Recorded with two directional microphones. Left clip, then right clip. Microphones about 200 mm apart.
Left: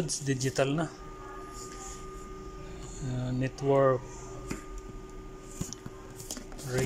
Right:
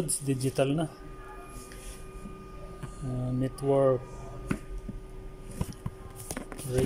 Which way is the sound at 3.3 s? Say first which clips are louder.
Even; 5° right (ahead or behind).